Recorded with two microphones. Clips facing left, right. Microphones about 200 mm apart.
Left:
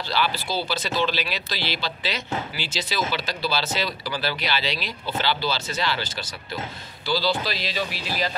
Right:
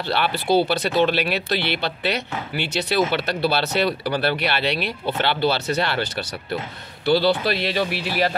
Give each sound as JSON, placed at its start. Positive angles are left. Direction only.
{"t": 0.0, "sound": "speech", "side_deg": -60}